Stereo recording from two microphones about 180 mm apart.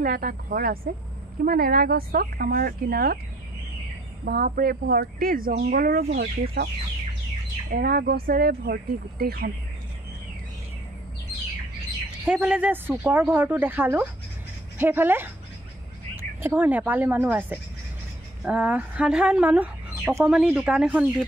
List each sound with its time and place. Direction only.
0.0 s speech: 55° right (ahead or behind)
4.2 s speech: 60° right (ahead or behind)
7.7 s speech: 55° right (ahead or behind)
12.3 s speech: 5° right (ahead or behind)